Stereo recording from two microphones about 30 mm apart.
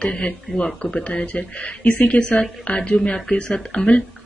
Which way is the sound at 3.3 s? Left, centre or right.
Left.